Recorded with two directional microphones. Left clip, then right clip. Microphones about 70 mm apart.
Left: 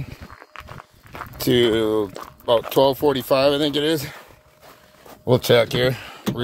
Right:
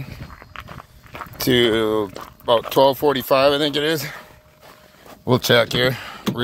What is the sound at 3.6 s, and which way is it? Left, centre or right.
Speech, left.